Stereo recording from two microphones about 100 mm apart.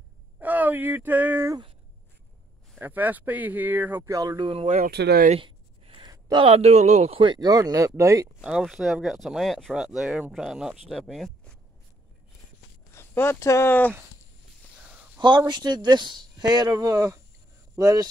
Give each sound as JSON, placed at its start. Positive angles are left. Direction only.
{"t": 0.4, "sound": "speech", "side_deg": -15}
{"t": 2.8, "sound": "speech", "side_deg": -20}
{"t": 4.0, "sound": "speech", "side_deg": -35}
{"t": 4.4, "sound": "speech", "side_deg": -65}
{"t": 5.3, "sound": "a sound", "side_deg": -60}
{"t": 6.0, "sound": "a sound", "side_deg": -40}
{"t": 6.4, "sound": "speech", "side_deg": -80}
{"t": 7.2, "sound": "speech", "side_deg": -40}
{"t": 8.4, "sound": "speech", "side_deg": -5}
{"t": 12.9, "sound": "speech", "side_deg": 25}
{"t": 14.8, "sound": "a sound", "side_deg": -15}
{"t": 15.1, "sound": "speech", "side_deg": -50}